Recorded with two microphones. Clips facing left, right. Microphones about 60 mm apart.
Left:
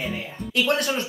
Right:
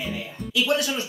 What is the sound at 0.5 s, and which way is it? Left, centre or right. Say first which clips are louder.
Speech: left 1 dB; left.